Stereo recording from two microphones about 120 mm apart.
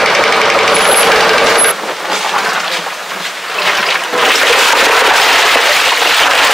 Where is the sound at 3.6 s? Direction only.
Centre (ahead or behind).